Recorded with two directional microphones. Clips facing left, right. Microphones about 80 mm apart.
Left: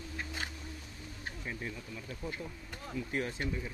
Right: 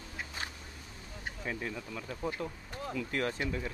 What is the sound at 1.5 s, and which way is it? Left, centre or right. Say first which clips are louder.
Speech: right 4 dB; right.